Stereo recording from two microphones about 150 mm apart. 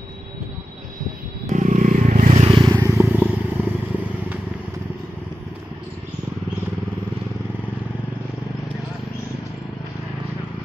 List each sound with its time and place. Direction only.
1.5 s vehicle: 55° right (ahead or behind)
2.4 s vehicle: 30° right (ahead or behind); by 3.7 s 10° right (ahead or behind)